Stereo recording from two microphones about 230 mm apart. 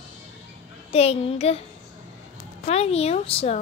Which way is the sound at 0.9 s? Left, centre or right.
Left.